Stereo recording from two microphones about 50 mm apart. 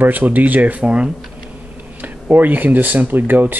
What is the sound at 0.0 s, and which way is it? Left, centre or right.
Speech, right.